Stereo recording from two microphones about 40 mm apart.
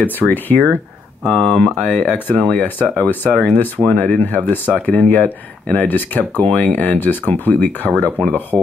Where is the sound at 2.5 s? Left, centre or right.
Left.